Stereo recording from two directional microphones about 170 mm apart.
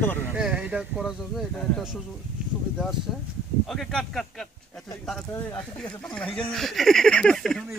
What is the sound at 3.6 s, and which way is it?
Speech, centre (ahead or behind).